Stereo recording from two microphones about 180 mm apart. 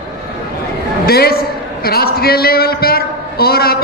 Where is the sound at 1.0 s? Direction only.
60° left (ahead or behind).